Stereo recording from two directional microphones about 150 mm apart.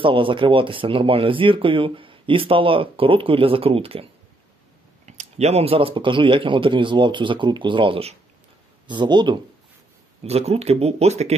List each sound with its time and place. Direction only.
0.0 s speech: 35° right (ahead or behind)
10.2 s speech: 45° right (ahead or behind)